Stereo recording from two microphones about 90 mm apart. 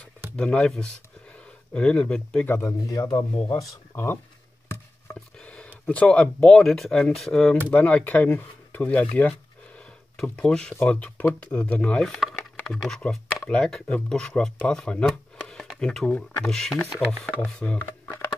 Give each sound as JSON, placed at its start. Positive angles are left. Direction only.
{"t": 0.4, "sound": "speech", "side_deg": 10}
{"t": 2.4, "sound": "speech", "side_deg": 30}
{"t": 5.1, "sound": "a sound", "side_deg": 10}
{"t": 5.9, "sound": "speech", "side_deg": 15}